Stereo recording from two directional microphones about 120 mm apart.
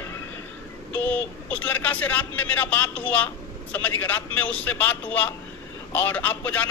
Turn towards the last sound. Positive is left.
turn(degrees=15)  # may be behind; listen again after turning